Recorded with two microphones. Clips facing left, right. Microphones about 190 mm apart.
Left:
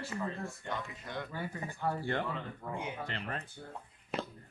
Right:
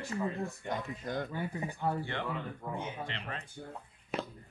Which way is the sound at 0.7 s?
40° right (ahead or behind).